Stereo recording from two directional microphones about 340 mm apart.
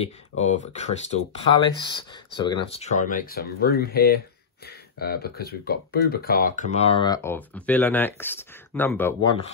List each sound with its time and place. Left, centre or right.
0.5 s speech: centre